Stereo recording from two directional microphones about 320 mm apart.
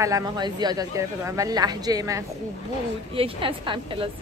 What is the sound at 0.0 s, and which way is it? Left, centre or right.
A woman's voice, centre.